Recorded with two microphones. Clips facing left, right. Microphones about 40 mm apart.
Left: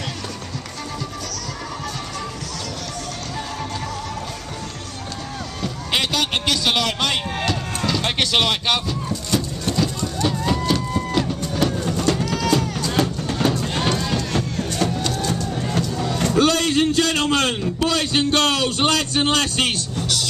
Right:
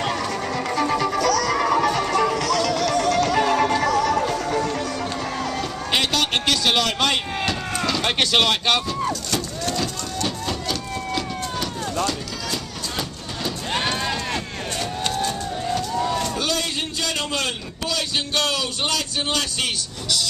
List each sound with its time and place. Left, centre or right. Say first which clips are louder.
0.7 s music: right 11 dB; right
5.9 s a sound: even; centre
9.8 s music: left 4 dB; centre
12.5 s music: left 8 dB; left
13.8 s music: left 2 dB; centre
16.3 s a man's voice: left 7 dB; left